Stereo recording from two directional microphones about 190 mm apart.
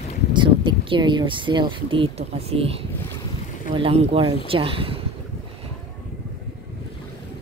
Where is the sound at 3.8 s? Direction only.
30° right (ahead or behind).